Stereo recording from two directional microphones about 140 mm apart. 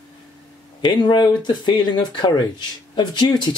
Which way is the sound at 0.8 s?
30° left (ahead or behind).